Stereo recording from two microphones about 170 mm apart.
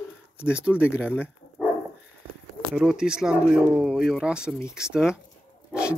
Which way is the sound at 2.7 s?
5° right (ahead or behind).